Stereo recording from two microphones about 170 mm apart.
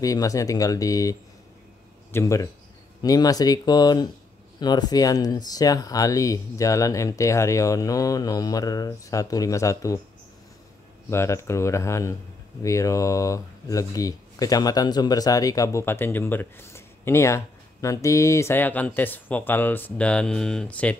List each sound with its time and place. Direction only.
0.0 s speech: 20° left (ahead or behind)
2.1 s speech: 20° left (ahead or behind)
11.1 s speech: 15° left (ahead or behind)